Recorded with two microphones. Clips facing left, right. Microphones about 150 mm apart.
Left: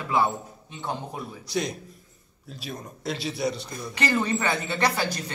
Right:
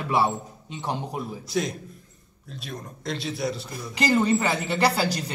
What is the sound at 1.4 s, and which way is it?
Speech, centre (ahead or behind).